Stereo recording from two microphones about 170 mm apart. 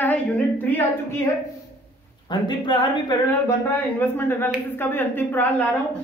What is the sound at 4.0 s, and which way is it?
Speech, 10° left (ahead or behind).